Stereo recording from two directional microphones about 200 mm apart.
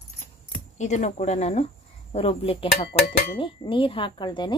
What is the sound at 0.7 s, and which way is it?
Speech, 35° left (ahead or behind).